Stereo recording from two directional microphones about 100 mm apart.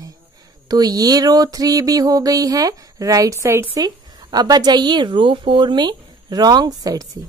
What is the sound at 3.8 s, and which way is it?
A woman's voice, 40° right (ahead or behind).